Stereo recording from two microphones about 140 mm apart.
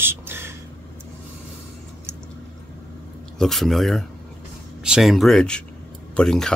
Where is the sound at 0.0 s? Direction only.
15° right (ahead or behind).